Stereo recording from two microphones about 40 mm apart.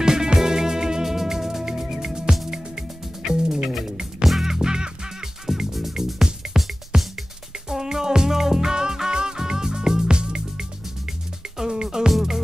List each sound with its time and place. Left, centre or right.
0.0 s music: centre
4.6 s music: centre
5.5 s music: centre
6.2 s music: centre